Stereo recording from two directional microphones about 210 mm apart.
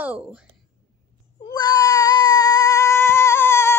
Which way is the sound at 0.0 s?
5° right (ahead or behind).